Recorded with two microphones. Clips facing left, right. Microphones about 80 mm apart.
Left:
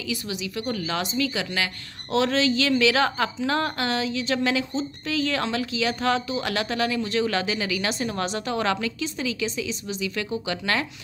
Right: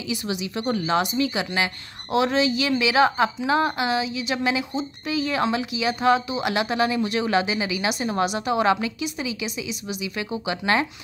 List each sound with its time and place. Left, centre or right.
0.1 s a woman's voice: right